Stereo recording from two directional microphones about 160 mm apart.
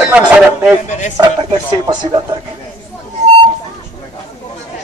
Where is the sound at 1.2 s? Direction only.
25° right (ahead or behind).